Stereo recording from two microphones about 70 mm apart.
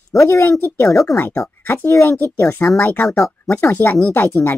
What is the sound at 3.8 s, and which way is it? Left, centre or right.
Speech, left.